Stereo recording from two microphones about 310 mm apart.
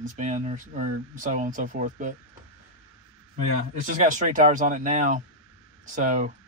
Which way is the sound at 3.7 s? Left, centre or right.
Right.